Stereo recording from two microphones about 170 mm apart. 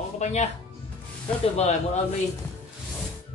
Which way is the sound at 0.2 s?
40° left (ahead or behind).